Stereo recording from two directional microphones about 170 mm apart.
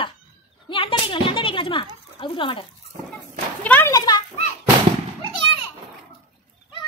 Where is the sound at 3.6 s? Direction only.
15° left (ahead or behind).